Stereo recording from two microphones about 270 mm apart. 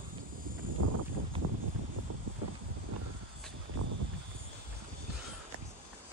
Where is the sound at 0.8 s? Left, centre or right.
Right.